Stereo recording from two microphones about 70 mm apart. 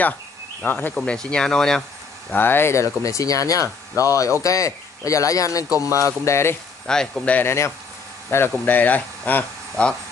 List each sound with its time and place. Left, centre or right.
0.7 s speech: left
0.9 s speech: centre
2.3 s speech: left
2.7 s speech: left
6.9 s speech: centre
7.4 s speech: left
8.3 s speech: left